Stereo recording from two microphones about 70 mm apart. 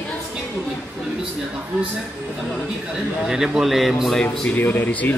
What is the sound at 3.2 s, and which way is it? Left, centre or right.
Speech, centre.